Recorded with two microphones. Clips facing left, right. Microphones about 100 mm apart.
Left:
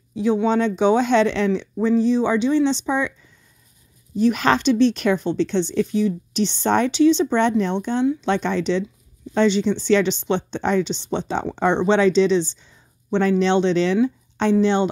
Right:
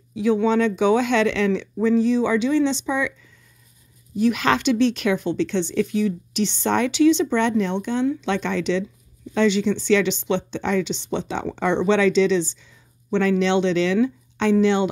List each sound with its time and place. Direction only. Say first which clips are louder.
0.1 s speech: even; 30° left (ahead or behind)
4.2 s speech: left 2 dB; 35° left (ahead or behind)